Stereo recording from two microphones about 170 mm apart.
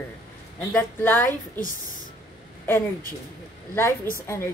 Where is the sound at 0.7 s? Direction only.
10° left (ahead or behind).